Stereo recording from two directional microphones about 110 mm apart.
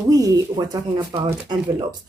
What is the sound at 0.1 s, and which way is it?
A woman's voice, 35° right (ahead or behind).